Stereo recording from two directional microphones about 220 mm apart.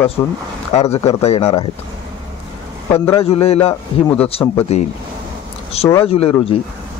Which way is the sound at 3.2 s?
25° left (ahead or behind).